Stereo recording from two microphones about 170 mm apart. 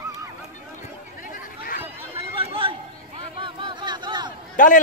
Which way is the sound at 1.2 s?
55° left (ahead or behind).